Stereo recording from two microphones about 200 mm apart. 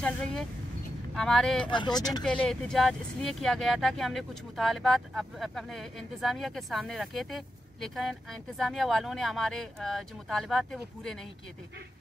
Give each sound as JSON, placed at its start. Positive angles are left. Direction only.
{"t": 1.1, "sound": "speech", "side_deg": 0}
{"t": 1.7, "sound": "speech", "side_deg": 20}
{"t": 2.2, "sound": "speech", "side_deg": 5}